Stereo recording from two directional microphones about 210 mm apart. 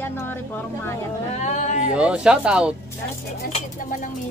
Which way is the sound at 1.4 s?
35° left (ahead or behind).